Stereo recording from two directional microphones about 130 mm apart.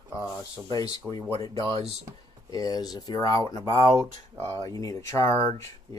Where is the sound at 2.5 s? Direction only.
30° left (ahead or behind).